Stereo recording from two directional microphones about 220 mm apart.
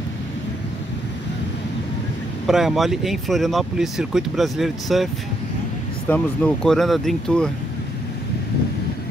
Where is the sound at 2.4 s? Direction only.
Centre (ahead or behind).